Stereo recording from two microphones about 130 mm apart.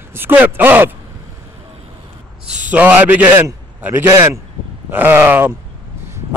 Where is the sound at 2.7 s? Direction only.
10° right (ahead or behind).